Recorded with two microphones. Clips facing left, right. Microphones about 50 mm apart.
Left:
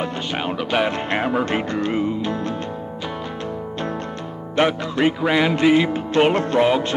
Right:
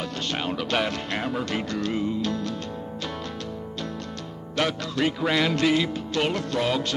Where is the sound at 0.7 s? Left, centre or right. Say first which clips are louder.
Left 6 dB; centre.